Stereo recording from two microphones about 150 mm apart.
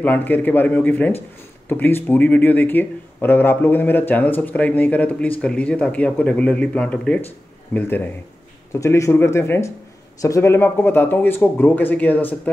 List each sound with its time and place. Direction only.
0.0 s speech: 10° left (ahead or behind)